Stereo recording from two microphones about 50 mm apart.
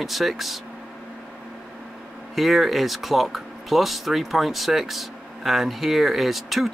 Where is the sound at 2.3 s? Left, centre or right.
Centre.